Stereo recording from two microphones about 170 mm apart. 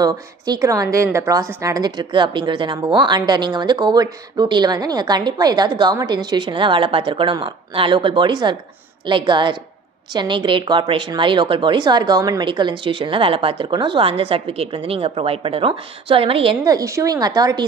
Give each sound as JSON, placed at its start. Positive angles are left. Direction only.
{"t": 0.0, "sound": "a woman's voice", "side_deg": -20}